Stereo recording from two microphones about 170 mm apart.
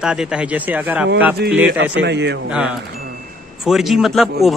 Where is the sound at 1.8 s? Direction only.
90° right.